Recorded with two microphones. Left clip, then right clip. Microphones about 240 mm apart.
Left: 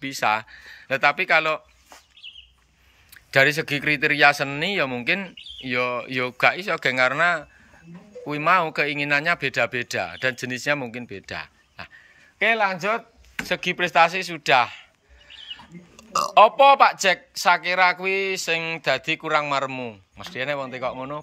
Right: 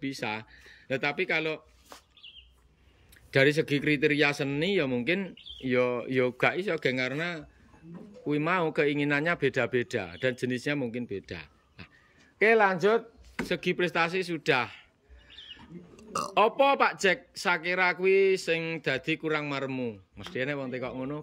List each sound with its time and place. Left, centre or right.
0.0 s speech: centre
3.3 s speech: centre
12.4 s speech: centre
13.4 s speech: centre